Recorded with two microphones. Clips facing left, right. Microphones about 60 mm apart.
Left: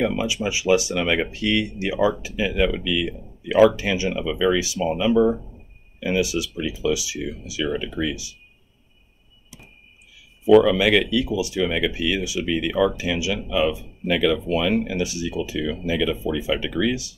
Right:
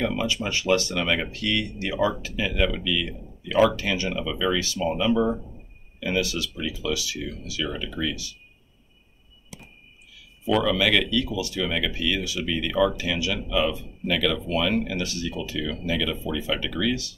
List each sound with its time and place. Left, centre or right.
0.0 s speech: centre
10.6 s speech: centre